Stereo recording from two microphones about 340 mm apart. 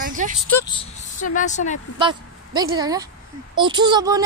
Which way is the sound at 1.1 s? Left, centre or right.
Left.